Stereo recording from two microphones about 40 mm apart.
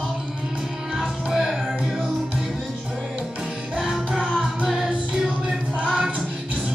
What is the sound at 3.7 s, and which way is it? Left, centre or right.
Music, centre.